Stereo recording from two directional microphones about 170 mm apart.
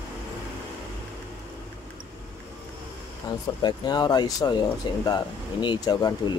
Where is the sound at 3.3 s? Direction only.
25° left (ahead or behind).